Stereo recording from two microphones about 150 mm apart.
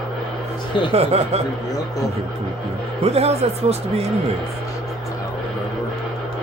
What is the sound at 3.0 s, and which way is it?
Speech, 45° right (ahead or behind).